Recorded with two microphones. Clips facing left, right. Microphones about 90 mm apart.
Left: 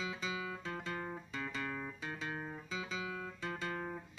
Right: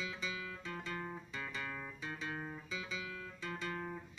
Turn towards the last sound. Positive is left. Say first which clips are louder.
# left 2 dB
turn(degrees=40)  # may be behind; listen again after turning